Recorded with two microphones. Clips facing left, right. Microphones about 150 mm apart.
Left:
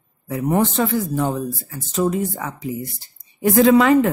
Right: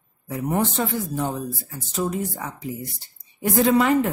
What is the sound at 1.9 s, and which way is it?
Speech, 90° left.